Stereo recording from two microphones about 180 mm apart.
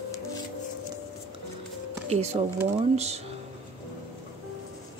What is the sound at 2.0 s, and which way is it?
Speech, 35° right (ahead or behind).